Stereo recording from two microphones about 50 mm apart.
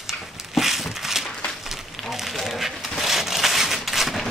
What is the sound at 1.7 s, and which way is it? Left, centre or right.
Fire, centre.